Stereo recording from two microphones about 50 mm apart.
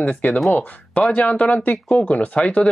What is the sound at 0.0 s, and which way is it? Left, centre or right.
Speech, left.